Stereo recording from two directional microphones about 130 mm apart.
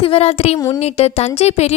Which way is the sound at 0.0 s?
50° left (ahead or behind).